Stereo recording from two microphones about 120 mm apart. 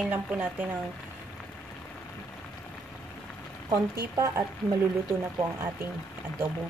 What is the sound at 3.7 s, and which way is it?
Speech, 25° right (ahead or behind).